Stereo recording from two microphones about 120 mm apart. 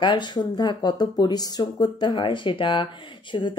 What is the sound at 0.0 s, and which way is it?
Speech, 40° left (ahead or behind).